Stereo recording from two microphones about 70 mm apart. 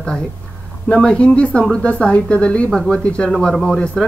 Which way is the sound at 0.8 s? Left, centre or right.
Centre.